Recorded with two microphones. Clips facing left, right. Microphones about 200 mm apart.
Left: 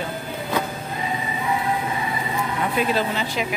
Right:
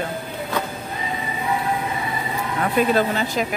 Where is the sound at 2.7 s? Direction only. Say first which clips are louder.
Right 5 dB; 45° right (ahead or behind).